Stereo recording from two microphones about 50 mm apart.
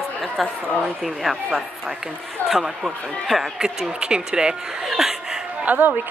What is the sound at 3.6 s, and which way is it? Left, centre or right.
Speech, centre.